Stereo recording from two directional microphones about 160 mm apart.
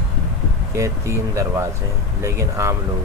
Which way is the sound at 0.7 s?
20° right (ahead or behind).